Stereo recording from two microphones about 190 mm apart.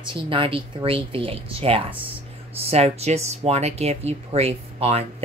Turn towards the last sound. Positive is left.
turn(degrees=-35)  # may be behind; listen again after turning